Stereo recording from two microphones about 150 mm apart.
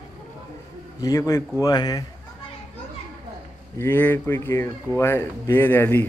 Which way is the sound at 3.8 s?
15° left (ahead or behind).